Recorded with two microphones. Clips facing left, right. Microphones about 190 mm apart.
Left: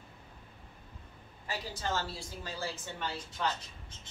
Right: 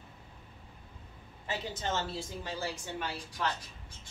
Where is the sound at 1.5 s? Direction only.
20° right (ahead or behind).